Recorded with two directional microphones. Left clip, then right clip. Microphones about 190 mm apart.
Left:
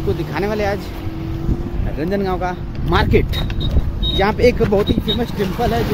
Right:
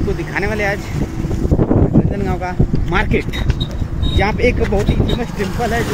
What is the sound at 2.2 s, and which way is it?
Speech, 25° left (ahead or behind).